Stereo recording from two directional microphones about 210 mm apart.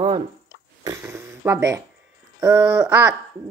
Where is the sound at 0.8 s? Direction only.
10° right (ahead or behind).